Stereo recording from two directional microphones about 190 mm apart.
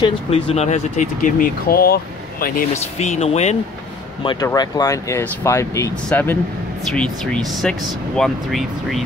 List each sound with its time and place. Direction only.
0.0 s speech: 30° left (ahead or behind)
1.7 s speech: 55° left (ahead or behind)
2.7 s speech: 35° left (ahead or behind)
4.2 s speech: 25° left (ahead or behind); by 9.0 s centre (ahead or behind)